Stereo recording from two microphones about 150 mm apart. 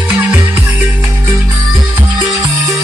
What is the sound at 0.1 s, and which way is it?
Music, 10° right (ahead or behind).